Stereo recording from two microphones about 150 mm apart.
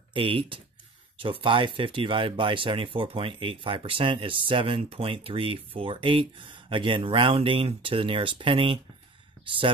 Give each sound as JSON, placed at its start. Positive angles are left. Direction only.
{"t": 0.1, "sound": "speech", "side_deg": -35}